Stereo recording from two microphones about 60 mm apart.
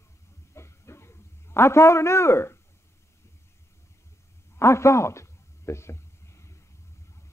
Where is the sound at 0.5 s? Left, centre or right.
Left.